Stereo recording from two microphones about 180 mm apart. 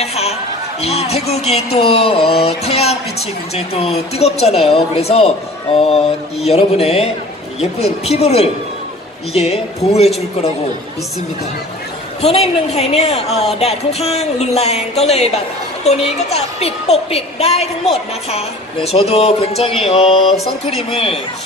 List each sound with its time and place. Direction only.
0.0 s a woman's voice: 35° left (ahead or behind)
12.2 s a woman's voice: 35° left (ahead or behind)